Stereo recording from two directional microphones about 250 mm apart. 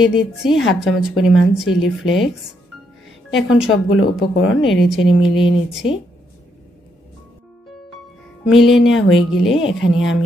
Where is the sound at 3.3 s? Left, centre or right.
Left.